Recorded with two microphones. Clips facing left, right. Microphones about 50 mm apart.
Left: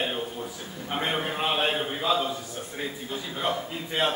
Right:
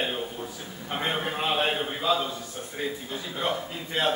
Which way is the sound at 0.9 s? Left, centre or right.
Centre.